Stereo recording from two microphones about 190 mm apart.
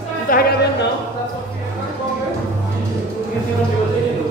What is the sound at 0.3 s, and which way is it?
Music, 45° left (ahead or behind).